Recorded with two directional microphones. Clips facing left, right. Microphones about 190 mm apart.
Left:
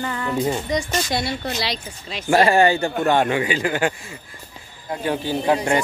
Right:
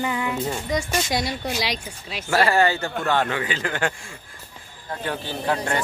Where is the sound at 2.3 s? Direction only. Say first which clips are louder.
Left 4 dB; 20° left (ahead or behind).